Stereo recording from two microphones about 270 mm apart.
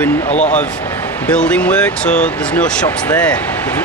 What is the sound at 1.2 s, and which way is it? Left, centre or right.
Speech, centre.